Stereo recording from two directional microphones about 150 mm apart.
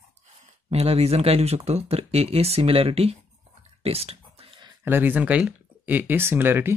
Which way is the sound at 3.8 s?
40° right (ahead or behind).